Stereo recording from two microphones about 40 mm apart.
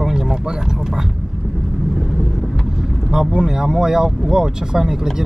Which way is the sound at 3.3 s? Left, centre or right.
Centre.